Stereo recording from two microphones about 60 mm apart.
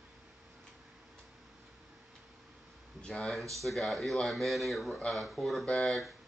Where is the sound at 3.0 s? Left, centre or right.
Centre.